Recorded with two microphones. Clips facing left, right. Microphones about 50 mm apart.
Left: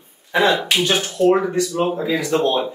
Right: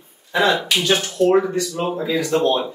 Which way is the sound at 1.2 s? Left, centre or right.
Centre.